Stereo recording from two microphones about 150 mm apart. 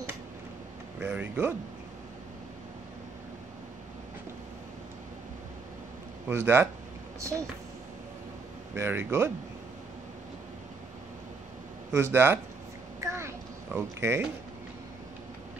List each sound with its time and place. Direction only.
0.9 s speech: 10° right (ahead or behind)
6.2 s speech: 15° right (ahead or behind)
8.7 s speech: 15° right (ahead or behind)
11.9 s speech: 15° right (ahead or behind)
13.0 s a sound: 20° right (ahead or behind)
13.7 s speech: 15° right (ahead or behind)